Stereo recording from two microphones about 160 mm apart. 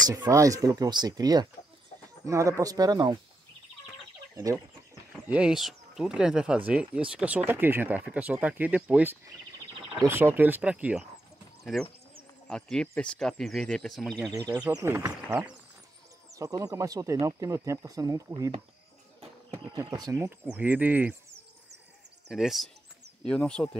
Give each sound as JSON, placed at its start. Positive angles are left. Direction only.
{"t": 0.0, "sound": "speech", "side_deg": -25}
{"t": 5.3, "sound": "speech", "side_deg": -5}
{"t": 14.5, "sound": "speech", "side_deg": -15}
{"t": 15.2, "sound": "speech", "side_deg": -5}
{"t": 16.3, "sound": "speech", "side_deg": -20}
{"t": 19.5, "sound": "speech", "side_deg": -25}
{"t": 22.3, "sound": "speech", "side_deg": 0}